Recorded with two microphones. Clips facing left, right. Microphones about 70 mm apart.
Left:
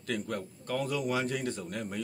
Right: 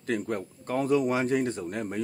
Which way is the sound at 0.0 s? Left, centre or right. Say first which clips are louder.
Right 5 dB; right.